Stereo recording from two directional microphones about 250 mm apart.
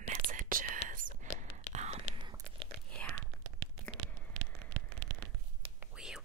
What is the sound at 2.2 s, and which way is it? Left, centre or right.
Tearing, centre.